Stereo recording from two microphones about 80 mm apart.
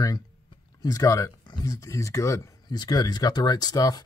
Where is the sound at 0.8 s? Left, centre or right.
Left.